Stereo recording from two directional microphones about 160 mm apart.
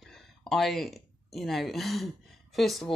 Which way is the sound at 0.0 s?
Centre (ahead or behind).